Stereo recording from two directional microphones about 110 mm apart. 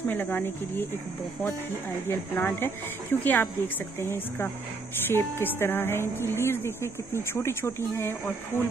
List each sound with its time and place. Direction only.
0.1 s speech: 15° left (ahead or behind)
2.0 s speech: 20° left (ahead or behind)